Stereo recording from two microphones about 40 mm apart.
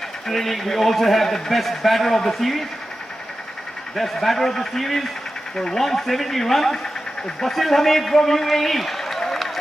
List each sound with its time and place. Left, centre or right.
0.3 s a man's voice: centre
3.9 s a man's voice: centre
5.6 s speech: centre
5.9 s a man's voice: centre